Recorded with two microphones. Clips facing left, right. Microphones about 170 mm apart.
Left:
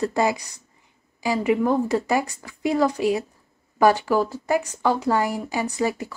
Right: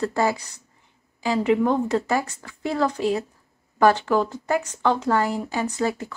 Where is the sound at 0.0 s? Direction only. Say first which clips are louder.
Left 1 dB; 15° left (ahead or behind).